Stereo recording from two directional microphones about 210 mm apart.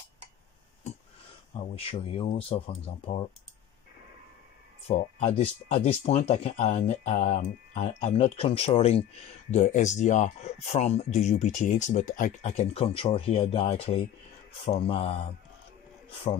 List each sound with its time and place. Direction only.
1.8 s speech: 25° left (ahead or behind)
4.8 s speech: 30° left (ahead or behind)